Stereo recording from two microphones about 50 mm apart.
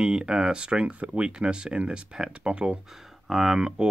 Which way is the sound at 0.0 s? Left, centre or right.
Centre.